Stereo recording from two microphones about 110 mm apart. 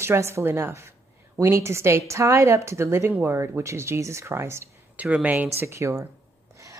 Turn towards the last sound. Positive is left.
turn(degrees=-30)  # may be behind; listen again after turning